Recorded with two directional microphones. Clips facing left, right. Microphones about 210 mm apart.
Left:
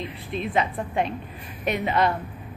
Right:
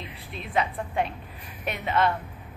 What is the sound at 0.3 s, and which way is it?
A woman's voice, centre (ahead or behind).